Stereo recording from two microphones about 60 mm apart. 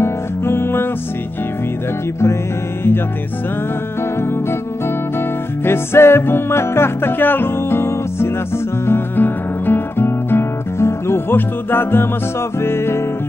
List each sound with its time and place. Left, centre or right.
0.0 s music: left
5.7 s music: left